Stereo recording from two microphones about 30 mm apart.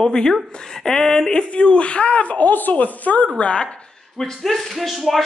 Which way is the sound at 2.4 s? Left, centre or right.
Left.